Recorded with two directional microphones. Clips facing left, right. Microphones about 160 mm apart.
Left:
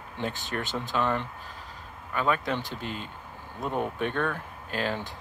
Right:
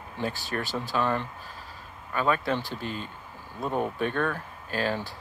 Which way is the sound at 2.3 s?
15° left (ahead or behind).